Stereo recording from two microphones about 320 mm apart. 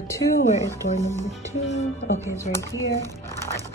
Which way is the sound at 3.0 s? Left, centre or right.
Centre.